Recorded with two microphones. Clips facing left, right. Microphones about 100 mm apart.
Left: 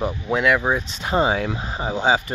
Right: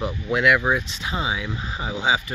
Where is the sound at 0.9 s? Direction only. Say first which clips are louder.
Left 7 dB; 45° left (ahead or behind).